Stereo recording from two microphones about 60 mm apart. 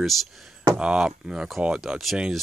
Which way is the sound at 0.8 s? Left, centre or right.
Centre.